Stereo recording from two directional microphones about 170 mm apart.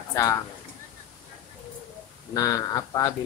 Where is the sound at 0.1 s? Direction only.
20° left (ahead or behind).